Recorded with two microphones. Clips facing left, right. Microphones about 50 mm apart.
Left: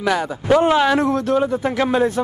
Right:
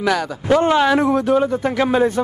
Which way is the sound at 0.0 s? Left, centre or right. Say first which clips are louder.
Right 1 dB; centre.